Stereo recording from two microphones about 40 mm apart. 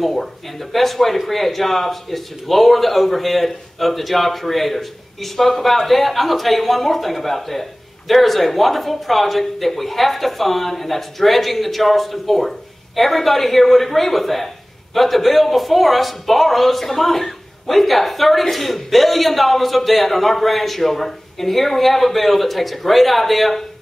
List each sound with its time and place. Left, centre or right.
0.0 s a man's voice: centre